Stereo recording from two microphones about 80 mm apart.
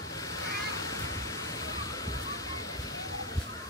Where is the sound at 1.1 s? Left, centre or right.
Left.